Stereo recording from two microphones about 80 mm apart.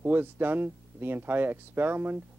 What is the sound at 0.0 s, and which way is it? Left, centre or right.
Speech, right.